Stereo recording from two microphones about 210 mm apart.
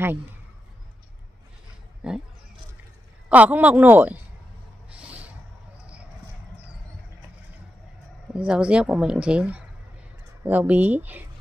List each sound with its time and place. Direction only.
2.0 s speech: 5° right (ahead or behind)
3.3 s speech: 5° right (ahead or behind)
4.9 s a sound: 5° right (ahead or behind)
8.3 s speech: 5° right (ahead or behind)